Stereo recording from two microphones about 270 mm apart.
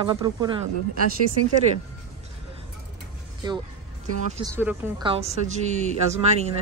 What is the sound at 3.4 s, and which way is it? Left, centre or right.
Speech, centre.